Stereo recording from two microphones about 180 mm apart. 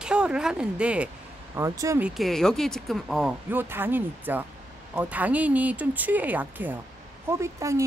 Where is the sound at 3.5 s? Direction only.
10° right (ahead or behind).